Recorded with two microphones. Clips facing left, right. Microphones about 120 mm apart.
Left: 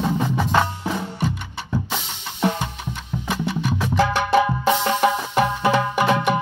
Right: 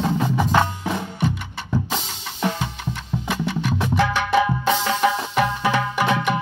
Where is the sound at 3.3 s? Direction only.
Centre (ahead or behind).